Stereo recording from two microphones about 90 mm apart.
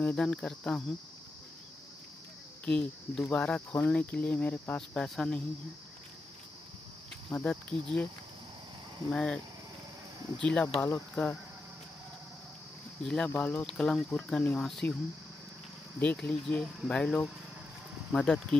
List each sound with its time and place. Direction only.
0.0 s speech: 10° left (ahead or behind)
2.6 s speech: 10° left (ahead or behind)
7.2 s speech: 15° left (ahead or behind)
9.1 s speech: 10° left (ahead or behind)
10.4 s speech: 15° left (ahead or behind)
13.0 s speech: 5° left (ahead or behind)
13.4 s speech: 20° left (ahead or behind)
13.7 s speech: 5° left (ahead or behind)
16.0 s speech: 10° left (ahead or behind)